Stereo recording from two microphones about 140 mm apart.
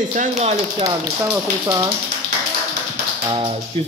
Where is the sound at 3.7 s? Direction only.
40° right (ahead or behind).